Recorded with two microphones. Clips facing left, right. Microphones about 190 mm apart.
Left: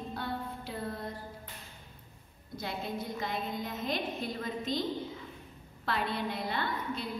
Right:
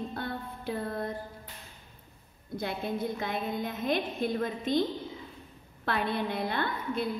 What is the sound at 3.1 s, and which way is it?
A woman's voice, 55° right (ahead or behind).